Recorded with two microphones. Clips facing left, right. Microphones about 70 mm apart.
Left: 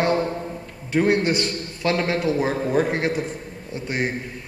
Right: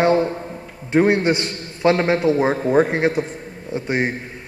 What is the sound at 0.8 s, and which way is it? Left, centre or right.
A man's voice, right.